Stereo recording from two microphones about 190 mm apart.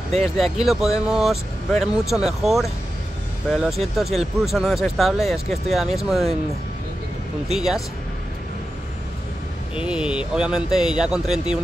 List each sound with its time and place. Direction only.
0.1 s speech: 35° right (ahead or behind)
0.6 s speech: centre (ahead or behind)
7.5 s speech: centre (ahead or behind)
9.8 s speech: 5° right (ahead or behind)